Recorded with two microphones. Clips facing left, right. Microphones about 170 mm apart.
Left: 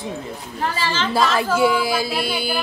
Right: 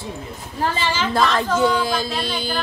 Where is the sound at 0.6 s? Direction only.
25° right (ahead or behind).